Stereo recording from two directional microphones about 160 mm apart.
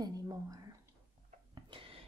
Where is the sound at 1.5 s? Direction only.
35° right (ahead or behind).